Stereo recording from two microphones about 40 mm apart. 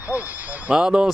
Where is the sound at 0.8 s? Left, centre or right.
Right.